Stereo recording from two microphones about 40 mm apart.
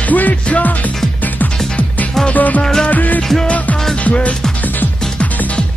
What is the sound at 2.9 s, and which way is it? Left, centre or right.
Music, left.